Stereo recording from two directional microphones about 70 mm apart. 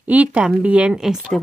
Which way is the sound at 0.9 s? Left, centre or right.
Centre.